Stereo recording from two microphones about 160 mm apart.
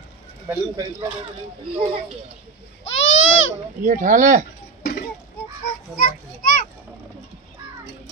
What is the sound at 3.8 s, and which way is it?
Speech, 55° right (ahead or behind).